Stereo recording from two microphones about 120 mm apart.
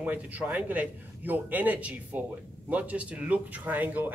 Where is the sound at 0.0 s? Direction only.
10° right (ahead or behind).